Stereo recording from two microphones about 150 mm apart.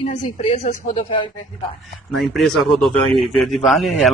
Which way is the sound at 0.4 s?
40° left (ahead or behind).